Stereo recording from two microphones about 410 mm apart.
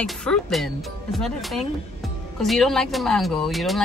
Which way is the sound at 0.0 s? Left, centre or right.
Centre.